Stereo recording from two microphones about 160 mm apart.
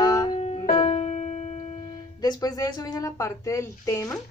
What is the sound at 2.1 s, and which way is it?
A woman's voice, 25° left (ahead or behind).